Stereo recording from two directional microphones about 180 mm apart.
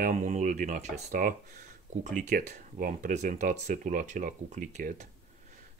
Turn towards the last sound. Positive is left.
turn(degrees=-45)  # may be behind; listen again after turning